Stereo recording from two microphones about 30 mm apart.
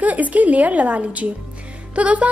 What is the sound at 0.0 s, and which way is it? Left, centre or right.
A woman's voice, right.